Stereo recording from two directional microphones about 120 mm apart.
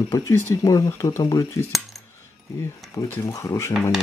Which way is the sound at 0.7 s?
25° left (ahead or behind).